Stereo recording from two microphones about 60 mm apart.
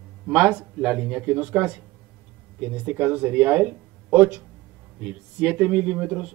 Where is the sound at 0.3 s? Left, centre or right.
Centre.